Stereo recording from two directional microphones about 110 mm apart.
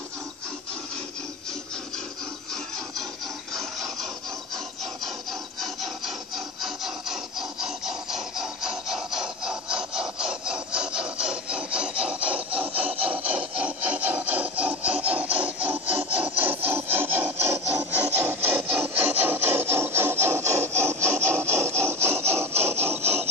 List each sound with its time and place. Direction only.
5.6 s rub: centre (ahead or behind); by 22.5 s 25° right (ahead or behind)